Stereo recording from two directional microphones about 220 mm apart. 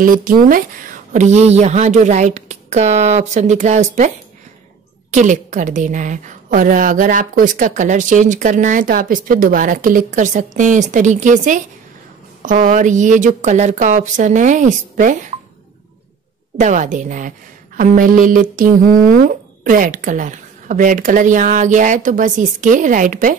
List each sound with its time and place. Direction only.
0.0 s a woman's voice: 40° right (ahead or behind)
5.1 s a woman's voice: 35° right (ahead or behind)
16.5 s a woman's voice: 35° right (ahead or behind)